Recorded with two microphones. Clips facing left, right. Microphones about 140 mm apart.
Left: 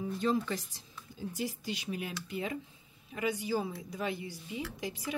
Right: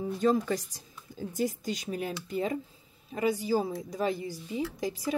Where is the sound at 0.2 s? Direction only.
40° right (ahead or behind).